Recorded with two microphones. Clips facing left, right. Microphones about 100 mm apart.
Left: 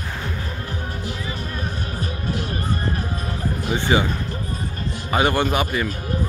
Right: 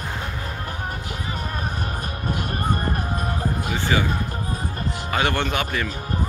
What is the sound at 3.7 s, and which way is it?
Speech, 20° left (ahead or behind).